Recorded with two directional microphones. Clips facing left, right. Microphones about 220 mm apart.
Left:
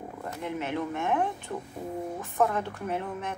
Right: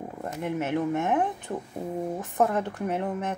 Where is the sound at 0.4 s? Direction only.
50° right (ahead or behind).